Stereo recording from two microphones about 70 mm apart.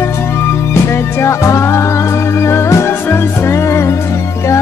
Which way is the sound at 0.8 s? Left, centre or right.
Left.